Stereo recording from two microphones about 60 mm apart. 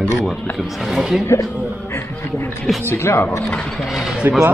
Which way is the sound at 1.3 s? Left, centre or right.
Left.